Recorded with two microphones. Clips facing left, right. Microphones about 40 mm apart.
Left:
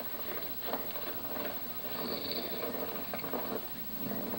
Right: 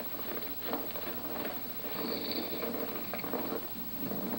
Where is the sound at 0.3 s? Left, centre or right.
Centre.